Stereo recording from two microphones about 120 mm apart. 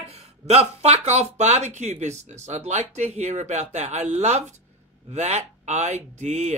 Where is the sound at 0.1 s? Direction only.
60° right (ahead or behind).